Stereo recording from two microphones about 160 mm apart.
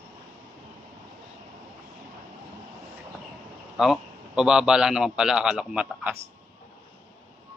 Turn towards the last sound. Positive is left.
turn(degrees=-5)  # may be behind; listen again after turning